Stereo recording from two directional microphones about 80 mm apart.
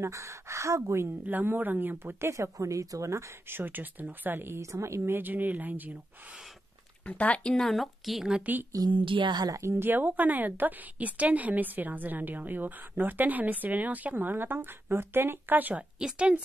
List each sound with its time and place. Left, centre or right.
0.0 s speech: right
1.2 s a woman's voice: right
4.6 s a woman's voice: right
7.1 s speech: centre
8.3 s speech: centre
8.9 s speech: right
9.4 s a woman's voice: right
16.0 s speech: centre